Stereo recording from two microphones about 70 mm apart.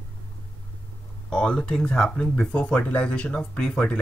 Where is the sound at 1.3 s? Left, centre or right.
Centre.